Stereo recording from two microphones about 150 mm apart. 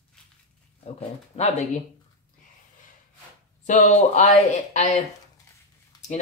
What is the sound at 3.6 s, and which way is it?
Speech, 55° left (ahead or behind).